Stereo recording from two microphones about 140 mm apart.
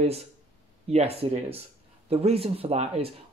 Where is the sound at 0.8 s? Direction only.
45° right (ahead or behind).